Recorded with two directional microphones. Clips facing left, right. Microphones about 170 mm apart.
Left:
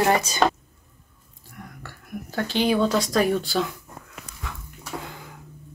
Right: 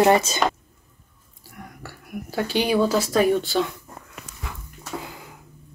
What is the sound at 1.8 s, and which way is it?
Speech, 10° right (ahead or behind).